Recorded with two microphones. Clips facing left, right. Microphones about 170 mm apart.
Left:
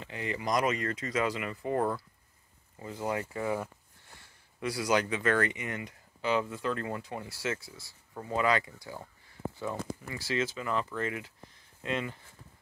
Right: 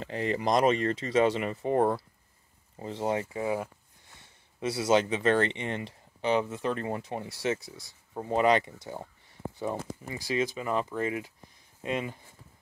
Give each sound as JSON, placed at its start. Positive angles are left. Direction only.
{"t": 0.0, "sound": "speech", "side_deg": -35}